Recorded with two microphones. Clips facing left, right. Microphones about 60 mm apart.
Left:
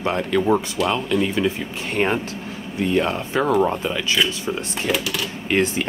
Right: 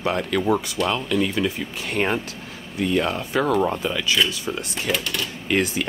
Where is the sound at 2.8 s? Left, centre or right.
Left.